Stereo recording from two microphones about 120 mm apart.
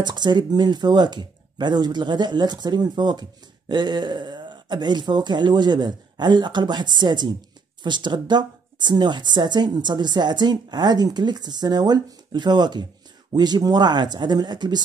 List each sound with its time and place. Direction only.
0.0 s speech: 40° right (ahead or behind)